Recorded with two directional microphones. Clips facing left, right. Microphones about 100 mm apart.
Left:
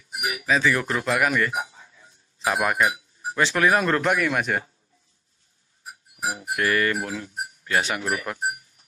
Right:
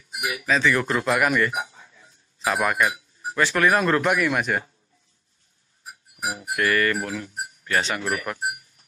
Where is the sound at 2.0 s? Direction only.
20° left (ahead or behind); by 4.6 s 5° right (ahead or behind).